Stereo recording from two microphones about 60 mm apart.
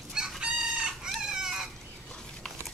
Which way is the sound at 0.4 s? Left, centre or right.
Centre.